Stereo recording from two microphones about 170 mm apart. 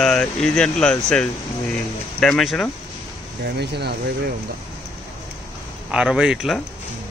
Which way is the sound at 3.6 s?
80° right.